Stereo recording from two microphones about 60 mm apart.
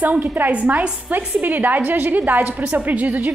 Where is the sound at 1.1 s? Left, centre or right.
Right.